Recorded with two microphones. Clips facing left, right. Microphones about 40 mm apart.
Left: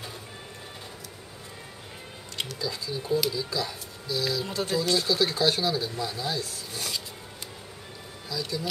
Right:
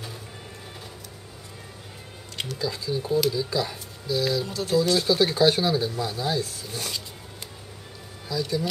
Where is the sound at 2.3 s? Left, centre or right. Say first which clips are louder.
Right 3 dB; centre.